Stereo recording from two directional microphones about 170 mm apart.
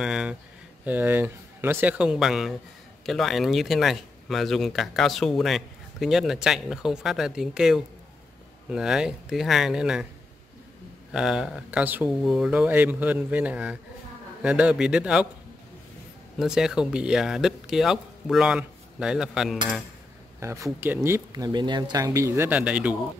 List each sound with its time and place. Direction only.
0.0 s speech: 5° right (ahead or behind)
11.1 s speech: 5° right (ahead or behind)
16.3 s speech: 5° right (ahead or behind)
20.3 s speech: 15° right (ahead or behind)